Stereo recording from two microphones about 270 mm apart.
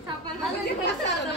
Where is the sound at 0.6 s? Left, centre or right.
Left.